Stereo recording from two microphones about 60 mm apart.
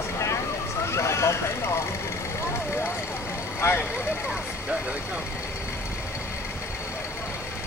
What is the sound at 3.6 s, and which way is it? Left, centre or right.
Vehicle, left.